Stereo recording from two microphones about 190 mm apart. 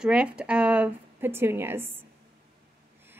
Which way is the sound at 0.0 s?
5° right (ahead or behind).